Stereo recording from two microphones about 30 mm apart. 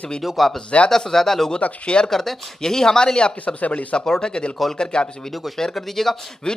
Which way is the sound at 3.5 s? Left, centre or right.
Left.